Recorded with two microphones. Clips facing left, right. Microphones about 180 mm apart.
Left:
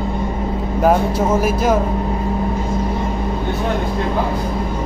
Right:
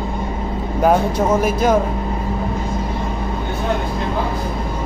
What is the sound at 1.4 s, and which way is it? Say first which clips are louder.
Speech: even; 5° left (ahead or behind).